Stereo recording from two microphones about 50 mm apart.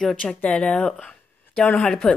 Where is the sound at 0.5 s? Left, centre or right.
Centre.